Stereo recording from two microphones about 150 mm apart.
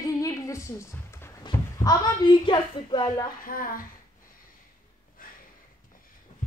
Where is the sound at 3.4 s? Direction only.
70° left (ahead or behind).